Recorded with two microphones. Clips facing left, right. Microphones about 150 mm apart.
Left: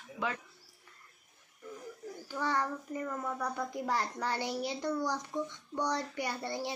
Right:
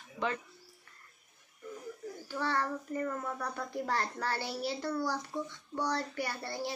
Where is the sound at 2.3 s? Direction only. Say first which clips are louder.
Even; 15° left (ahead or behind).